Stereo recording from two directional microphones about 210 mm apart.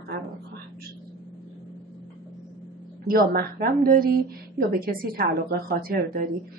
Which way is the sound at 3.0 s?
45° right (ahead or behind).